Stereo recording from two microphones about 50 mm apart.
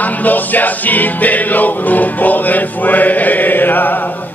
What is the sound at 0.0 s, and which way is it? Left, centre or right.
Music, left.